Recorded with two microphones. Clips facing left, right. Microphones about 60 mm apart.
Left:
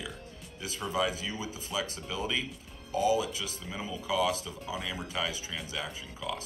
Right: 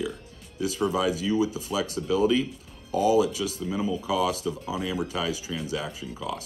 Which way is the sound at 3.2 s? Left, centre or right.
Left.